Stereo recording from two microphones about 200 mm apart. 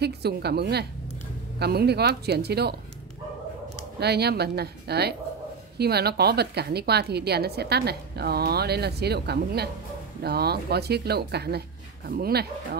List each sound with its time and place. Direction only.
0.0 s a woman's voice: 55° right (ahead or behind)
4.0 s a woman's voice: 55° right (ahead or behind)